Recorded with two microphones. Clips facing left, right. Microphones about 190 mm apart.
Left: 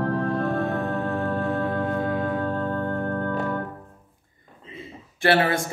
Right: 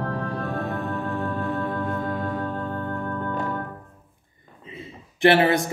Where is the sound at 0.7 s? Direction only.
60° left (ahead or behind).